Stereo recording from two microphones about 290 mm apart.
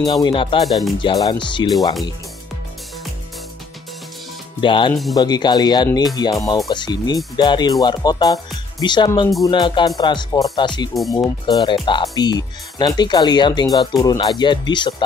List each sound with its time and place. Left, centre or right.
0.0 s speech: centre
0.7 s speech: centre
1.0 s speech: centre
4.6 s speech: centre
11.0 s speech: centre
11.4 s speech: centre